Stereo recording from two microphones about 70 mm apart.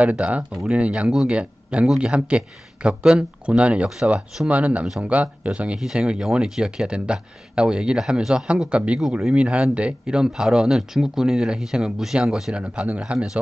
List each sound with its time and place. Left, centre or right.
0.0 s speech: centre